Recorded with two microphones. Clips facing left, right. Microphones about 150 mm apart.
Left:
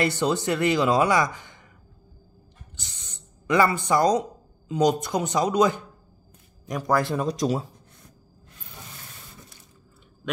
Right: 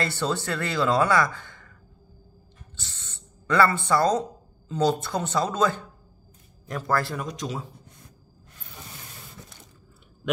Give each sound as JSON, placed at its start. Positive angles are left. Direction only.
{"t": 0.0, "sound": "speech", "side_deg": 20}
{"t": 2.7, "sound": "speech", "side_deg": 15}
{"t": 7.2, "sound": "speech", "side_deg": 35}